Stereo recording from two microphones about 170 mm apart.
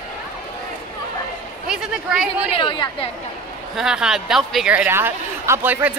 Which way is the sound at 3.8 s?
5° right (ahead or behind).